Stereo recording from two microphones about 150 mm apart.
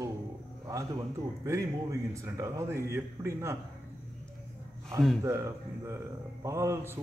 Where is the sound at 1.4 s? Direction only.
20° right (ahead or behind).